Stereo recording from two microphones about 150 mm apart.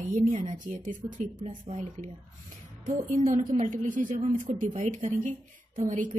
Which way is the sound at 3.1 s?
50° right (ahead or behind).